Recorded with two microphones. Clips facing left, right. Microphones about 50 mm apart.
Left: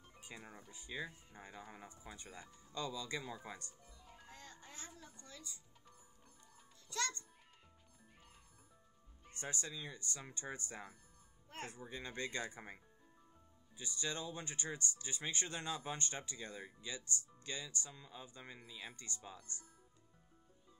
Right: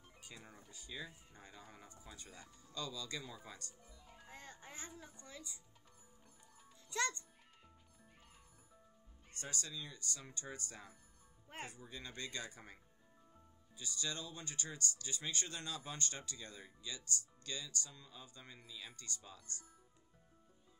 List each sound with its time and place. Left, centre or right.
0.2 s speech: left
3.8 s music: centre
4.3 s music: right
5.0 s a child's voice: centre
6.9 s a child's voice: centre
9.3 s speech: left
11.4 s speech: right
11.7 s speech: left